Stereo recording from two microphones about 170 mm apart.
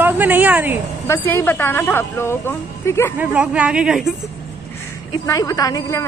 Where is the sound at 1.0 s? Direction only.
15° left (ahead or behind).